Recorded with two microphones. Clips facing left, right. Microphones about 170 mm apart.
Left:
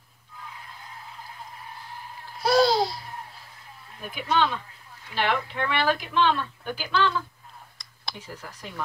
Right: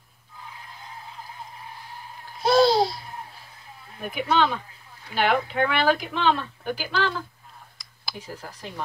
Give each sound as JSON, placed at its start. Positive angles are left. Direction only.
{"t": 2.4, "sound": "babbling", "side_deg": -25}
{"t": 4.0, "sound": "speech", "side_deg": -55}
{"t": 5.5, "sound": "speech", "side_deg": -60}
{"t": 6.2, "sound": "speech", "side_deg": -40}
{"t": 7.8, "sound": "a sound", "side_deg": -5}
{"t": 8.4, "sound": "speech", "side_deg": -30}